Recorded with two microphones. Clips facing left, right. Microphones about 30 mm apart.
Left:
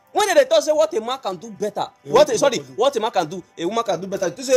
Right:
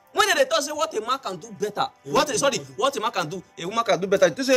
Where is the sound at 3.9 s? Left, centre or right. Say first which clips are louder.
Right 4 dB; right.